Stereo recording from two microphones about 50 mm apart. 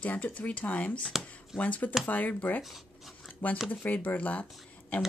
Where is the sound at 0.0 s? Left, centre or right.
Left.